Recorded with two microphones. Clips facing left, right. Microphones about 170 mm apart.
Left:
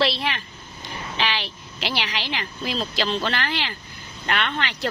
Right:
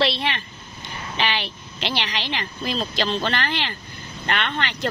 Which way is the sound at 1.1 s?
Centre (ahead or behind).